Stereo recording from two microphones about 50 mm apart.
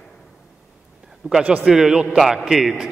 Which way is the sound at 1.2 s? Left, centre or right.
Right.